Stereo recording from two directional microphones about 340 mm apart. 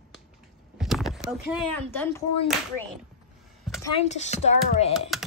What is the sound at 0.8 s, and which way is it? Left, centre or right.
Speech, centre.